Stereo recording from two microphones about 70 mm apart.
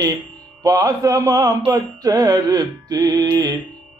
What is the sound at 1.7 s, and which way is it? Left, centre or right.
Music, right.